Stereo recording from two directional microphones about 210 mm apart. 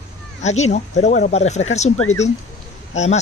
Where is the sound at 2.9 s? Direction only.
30° left (ahead or behind).